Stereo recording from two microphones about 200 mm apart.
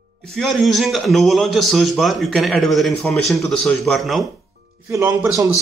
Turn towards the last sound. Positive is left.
turn(degrees=-15)  # may be behind; listen again after turning